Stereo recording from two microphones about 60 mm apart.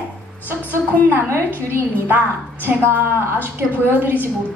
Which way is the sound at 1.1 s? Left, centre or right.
Right.